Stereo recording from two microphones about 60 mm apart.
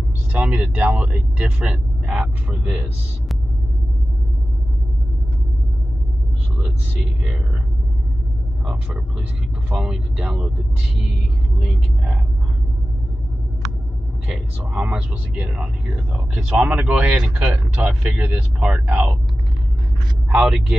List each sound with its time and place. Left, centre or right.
0.3 s speech: right
8.6 s speech: centre
11.6 s speech: centre
14.6 s speech: centre
20.2 s speech: centre